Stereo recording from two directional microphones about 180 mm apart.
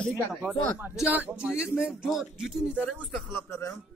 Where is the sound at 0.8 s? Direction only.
10° right (ahead or behind).